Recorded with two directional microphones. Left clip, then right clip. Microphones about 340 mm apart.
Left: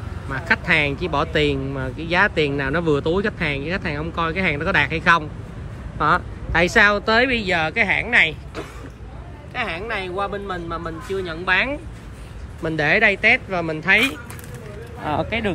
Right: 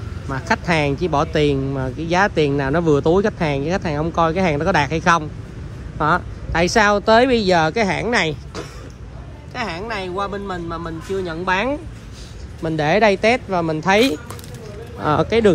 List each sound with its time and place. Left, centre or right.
0.3 s speech: centre
9.5 s speech: centre